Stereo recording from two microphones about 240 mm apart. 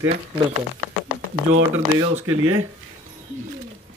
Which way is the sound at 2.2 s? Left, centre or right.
Right.